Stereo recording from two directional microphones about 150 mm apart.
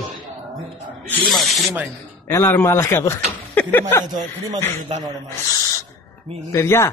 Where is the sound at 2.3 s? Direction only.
20° left (ahead or behind).